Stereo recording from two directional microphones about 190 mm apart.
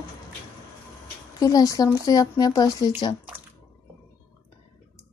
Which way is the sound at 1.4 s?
20° left (ahead or behind).